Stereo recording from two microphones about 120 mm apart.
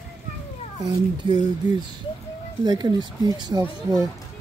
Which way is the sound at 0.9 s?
35° right (ahead or behind).